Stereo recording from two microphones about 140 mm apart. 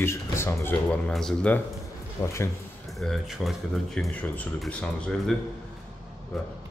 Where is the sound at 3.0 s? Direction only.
Centre (ahead or behind).